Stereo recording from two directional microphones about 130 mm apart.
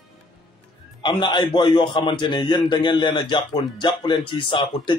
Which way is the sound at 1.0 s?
35° left (ahead or behind).